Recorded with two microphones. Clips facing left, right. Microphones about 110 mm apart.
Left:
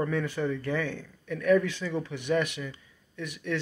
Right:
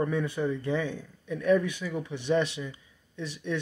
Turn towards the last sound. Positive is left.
turn(degrees=-25)  # may be behind; listen again after turning